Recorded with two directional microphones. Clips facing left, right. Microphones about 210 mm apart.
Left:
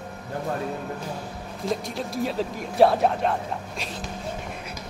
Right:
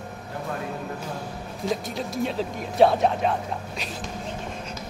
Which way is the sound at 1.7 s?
Centre (ahead or behind).